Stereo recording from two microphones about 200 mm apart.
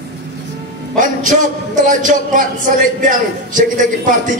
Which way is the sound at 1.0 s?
40° right (ahead or behind).